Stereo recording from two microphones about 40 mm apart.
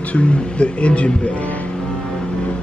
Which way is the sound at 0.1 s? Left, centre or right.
Left.